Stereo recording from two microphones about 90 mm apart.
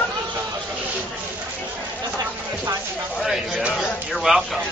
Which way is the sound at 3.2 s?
5° right (ahead or behind).